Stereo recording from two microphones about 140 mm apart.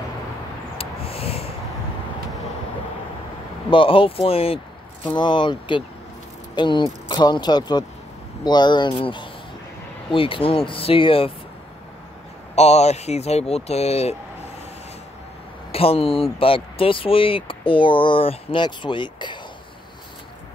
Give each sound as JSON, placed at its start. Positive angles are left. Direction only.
{"t": 0.7, "sound": "a sound", "side_deg": 45}
{"t": 3.7, "sound": "speech", "side_deg": 40}
{"t": 12.5, "sound": "speech", "side_deg": 50}
{"t": 15.7, "sound": "speech", "side_deg": 45}